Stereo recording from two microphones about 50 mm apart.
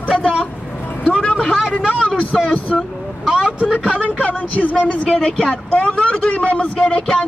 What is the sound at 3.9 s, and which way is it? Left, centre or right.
Speech, centre.